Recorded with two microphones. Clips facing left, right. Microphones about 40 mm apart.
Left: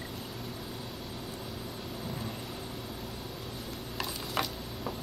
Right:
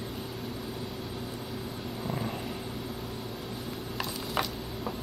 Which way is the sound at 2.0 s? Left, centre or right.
Right.